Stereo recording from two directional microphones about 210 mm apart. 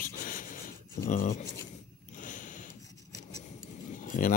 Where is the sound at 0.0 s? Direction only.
40° left (ahead or behind).